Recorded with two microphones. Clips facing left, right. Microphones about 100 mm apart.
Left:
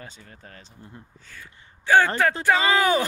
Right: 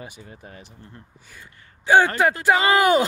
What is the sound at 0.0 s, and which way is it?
Speech, 15° right (ahead or behind).